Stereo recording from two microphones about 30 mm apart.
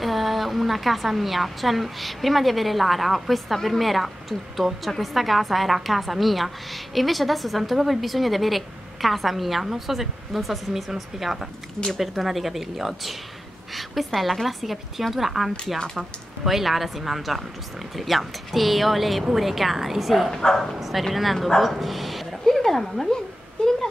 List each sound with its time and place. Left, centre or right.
0.0 s a woman's voice: centre
20.4 s speech: centre
21.1 s a woman's voice: centre
22.4 s speech: centre